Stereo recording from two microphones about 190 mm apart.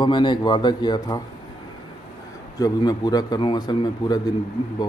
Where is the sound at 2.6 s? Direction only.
20° left (ahead or behind).